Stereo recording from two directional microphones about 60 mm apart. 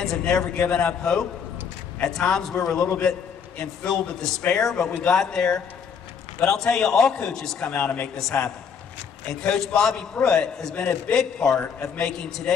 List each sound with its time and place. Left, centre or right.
0.0 s a man's voice: centre
7.8 s speech: left
8.2 s a man's voice: centre